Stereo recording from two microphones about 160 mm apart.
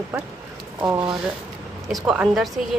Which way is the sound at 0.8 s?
25° right (ahead or behind).